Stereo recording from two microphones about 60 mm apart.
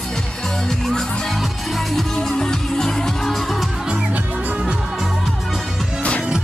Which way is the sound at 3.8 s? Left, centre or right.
Centre.